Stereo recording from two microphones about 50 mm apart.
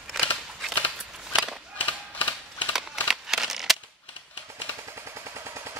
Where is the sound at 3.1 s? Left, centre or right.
Centre.